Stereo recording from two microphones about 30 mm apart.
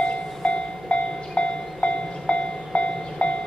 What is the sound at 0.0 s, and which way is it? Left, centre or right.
Train, left.